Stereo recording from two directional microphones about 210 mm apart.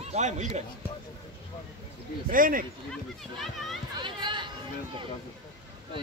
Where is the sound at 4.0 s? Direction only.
20° right (ahead or behind).